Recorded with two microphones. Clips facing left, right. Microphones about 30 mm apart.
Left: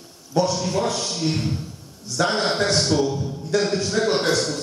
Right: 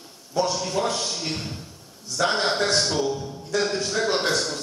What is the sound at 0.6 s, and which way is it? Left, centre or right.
A man's voice, centre.